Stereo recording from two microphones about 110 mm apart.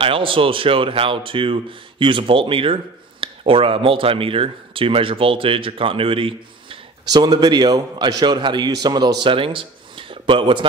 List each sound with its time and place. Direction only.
0.0 s speech: 55° right (ahead or behind)
7.1 s a man's voice: 40° right (ahead or behind)